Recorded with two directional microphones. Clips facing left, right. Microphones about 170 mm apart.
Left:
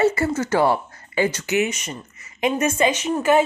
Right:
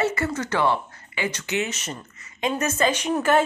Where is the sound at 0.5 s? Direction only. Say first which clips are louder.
Left 3 dB; 40° left (ahead or behind).